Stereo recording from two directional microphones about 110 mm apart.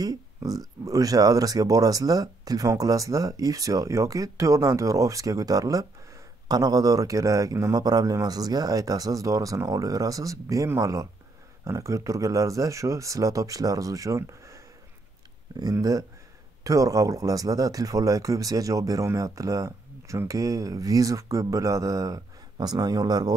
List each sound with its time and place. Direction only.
0.0 s speech: 35° right (ahead or behind)
15.7 s speech: 35° right (ahead or behind)